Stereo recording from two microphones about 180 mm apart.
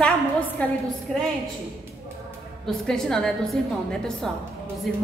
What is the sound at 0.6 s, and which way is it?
Speech, 5° left (ahead or behind).